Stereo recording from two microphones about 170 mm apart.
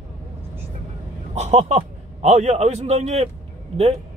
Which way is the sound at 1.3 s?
40° right (ahead or behind).